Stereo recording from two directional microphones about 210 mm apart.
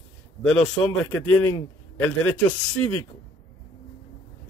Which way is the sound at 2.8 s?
5° left (ahead or behind).